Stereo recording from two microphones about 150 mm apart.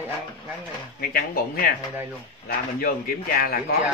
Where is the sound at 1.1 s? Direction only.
90° left.